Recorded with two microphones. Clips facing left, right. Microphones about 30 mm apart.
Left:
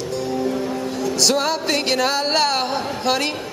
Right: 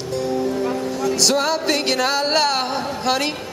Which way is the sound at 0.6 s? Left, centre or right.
Centre.